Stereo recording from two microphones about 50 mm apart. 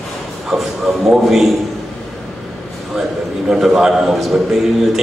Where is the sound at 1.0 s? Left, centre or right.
Centre.